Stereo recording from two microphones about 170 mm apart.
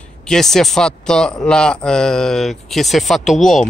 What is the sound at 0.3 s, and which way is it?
Speech, centre (ahead or behind).